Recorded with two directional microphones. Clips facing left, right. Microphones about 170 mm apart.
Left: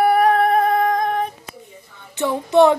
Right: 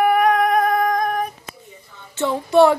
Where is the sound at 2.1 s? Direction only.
15° left (ahead or behind).